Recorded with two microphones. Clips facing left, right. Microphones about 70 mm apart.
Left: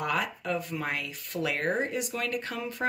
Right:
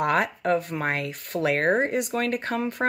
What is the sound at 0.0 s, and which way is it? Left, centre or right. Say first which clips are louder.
A woman's voice: right 7 dB; right.